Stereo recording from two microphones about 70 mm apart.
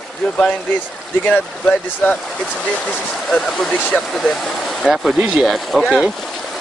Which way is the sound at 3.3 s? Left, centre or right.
Centre.